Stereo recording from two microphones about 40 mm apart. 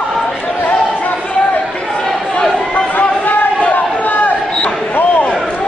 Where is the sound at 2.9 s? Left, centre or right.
Left.